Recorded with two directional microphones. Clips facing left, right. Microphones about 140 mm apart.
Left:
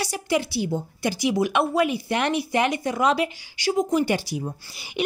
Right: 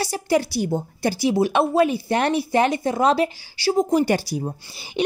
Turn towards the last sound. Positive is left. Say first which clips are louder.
# right 2 dB
turn(degrees=-30)  # may be behind; listen again after turning